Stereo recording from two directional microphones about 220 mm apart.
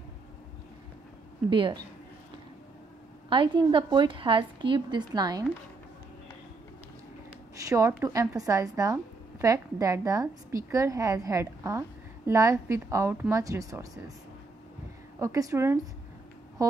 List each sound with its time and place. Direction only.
1.5 s a woman's voice: 20° right (ahead or behind)
3.3 s a woman's voice: 20° right (ahead or behind)
7.6 s a woman's voice: 15° right (ahead or behind)
15.1 s a woman's voice: 15° right (ahead or behind)